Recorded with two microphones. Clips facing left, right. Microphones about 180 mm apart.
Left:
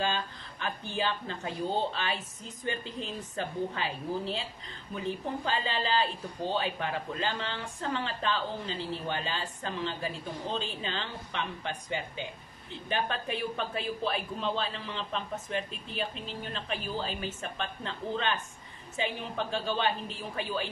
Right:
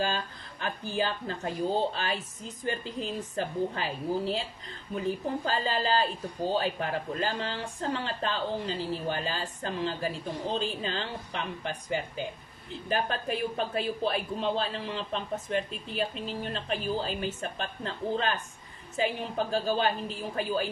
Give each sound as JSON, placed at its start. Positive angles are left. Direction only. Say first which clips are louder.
{"t": 0.0, "sound": "speech", "louder": "right 1 dB", "side_deg": -40}